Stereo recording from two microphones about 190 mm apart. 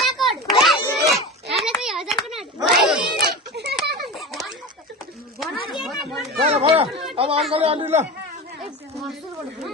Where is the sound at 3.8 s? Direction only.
60° right (ahead or behind).